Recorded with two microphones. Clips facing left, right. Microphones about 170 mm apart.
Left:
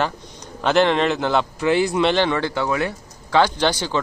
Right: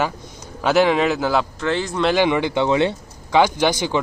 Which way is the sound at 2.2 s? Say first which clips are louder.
Right 3 dB; 15° right (ahead or behind).